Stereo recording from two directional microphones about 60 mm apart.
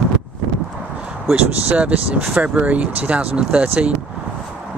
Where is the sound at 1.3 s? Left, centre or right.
Right.